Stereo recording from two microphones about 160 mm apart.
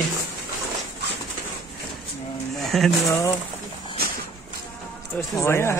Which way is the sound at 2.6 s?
Centre (ahead or behind).